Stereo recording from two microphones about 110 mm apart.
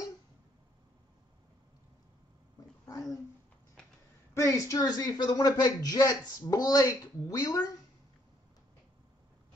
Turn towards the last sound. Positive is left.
turn(degrees=35)  # may be behind; listen again after turning